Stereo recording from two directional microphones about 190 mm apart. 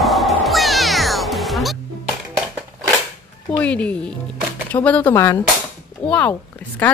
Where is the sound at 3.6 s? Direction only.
5° left (ahead or behind).